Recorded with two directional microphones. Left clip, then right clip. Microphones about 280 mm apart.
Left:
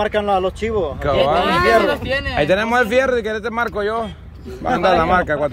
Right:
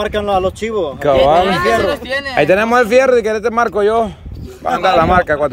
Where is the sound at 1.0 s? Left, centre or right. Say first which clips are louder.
Right 6 dB; centre.